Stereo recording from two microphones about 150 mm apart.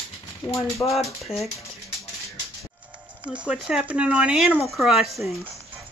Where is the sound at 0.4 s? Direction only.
30° left (ahead or behind).